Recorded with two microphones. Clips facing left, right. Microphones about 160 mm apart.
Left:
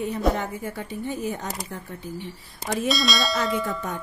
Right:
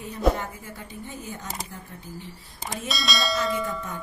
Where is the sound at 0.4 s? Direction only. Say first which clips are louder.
Left 6 dB; 70° left (ahead or behind).